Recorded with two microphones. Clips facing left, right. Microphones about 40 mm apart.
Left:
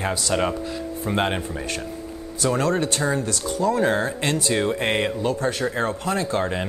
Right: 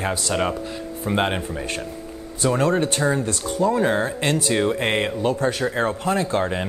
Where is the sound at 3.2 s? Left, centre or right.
Right.